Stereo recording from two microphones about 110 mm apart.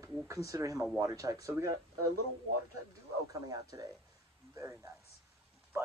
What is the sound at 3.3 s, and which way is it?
Speech, 35° right (ahead or behind).